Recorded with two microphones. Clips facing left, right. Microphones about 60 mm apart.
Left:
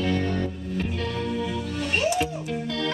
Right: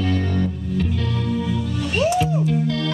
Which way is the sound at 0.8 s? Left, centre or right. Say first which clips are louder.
Right 3 dB; left.